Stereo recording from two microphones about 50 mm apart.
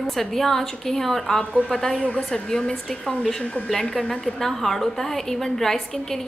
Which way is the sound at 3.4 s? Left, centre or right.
Left.